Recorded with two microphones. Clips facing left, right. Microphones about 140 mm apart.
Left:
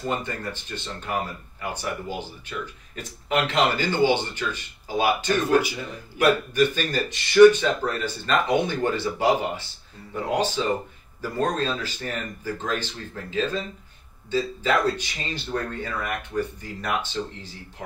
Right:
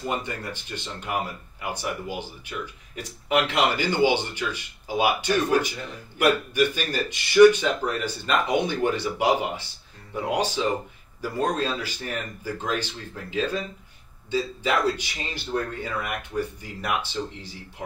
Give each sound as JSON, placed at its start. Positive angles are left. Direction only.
{"t": 0.1, "sound": "speech", "side_deg": -10}